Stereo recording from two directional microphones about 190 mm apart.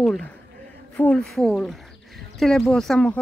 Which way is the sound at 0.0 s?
Centre (ahead or behind).